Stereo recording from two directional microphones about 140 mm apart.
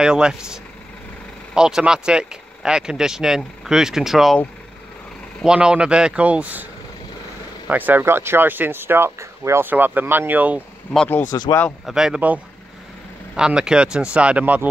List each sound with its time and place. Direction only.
0.0 s speech: 5° right (ahead or behind)
5.4 s speech: 5° right (ahead or behind)
11.3 s speech: 30° left (ahead or behind)
11.8 s speech: 5° right (ahead or behind)
13.4 s speech: 5° right (ahead or behind)